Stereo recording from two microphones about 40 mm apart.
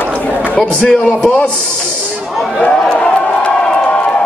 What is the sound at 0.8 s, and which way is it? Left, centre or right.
Speech, left.